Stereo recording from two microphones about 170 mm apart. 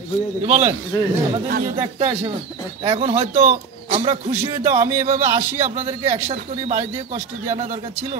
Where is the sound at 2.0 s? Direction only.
35° right (ahead or behind).